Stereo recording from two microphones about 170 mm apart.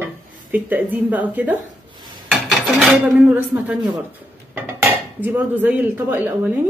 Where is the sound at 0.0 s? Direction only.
10° right (ahead or behind).